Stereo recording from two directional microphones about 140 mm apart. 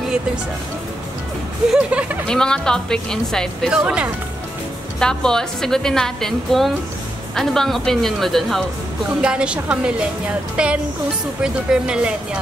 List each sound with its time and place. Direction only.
1.7 s a woman's voice: 10° right (ahead or behind)
2.2 s a woman's voice: 5° left (ahead or behind)
3.8 s a woman's voice: 10° right (ahead or behind)
5.0 s a woman's voice: 5° left (ahead or behind)